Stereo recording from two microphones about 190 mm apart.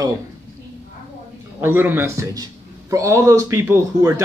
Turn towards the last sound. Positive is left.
turn(degrees=-15)  # may be behind; listen again after turning